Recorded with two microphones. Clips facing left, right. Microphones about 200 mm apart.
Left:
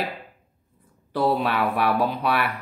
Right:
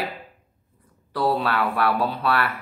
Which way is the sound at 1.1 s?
20° left (ahead or behind).